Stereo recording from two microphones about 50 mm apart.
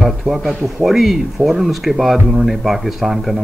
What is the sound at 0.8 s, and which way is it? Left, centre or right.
Speech, centre.